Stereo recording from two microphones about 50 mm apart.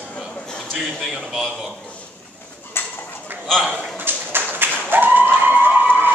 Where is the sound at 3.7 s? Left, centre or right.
Left.